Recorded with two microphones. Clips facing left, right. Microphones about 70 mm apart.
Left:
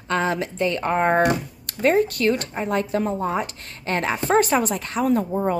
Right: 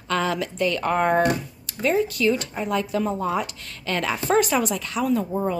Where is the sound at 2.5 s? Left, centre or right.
Left.